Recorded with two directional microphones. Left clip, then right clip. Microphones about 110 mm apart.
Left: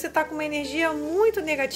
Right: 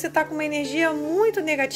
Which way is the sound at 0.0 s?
35° right (ahead or behind).